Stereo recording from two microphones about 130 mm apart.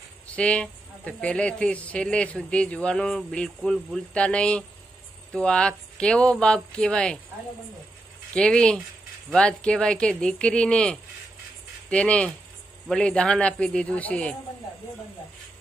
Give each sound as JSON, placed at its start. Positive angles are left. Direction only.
{"t": 0.3, "sound": "speech", "side_deg": 10}
{"t": 8.3, "sound": "speech", "side_deg": 5}